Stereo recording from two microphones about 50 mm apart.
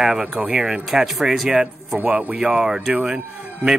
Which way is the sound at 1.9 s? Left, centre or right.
Right.